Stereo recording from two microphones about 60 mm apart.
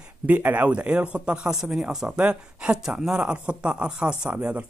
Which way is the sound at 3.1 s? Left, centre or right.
Centre.